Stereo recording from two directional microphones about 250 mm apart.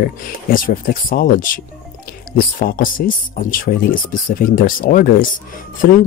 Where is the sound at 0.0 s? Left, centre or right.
Left.